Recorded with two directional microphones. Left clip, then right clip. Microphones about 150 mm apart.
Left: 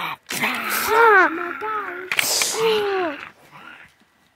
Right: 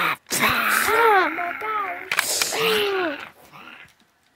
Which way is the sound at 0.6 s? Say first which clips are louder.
Right 3 dB; 20° right (ahead or behind).